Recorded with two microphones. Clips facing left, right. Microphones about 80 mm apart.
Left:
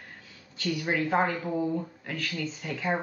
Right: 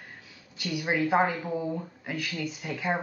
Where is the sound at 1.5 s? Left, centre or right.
Centre.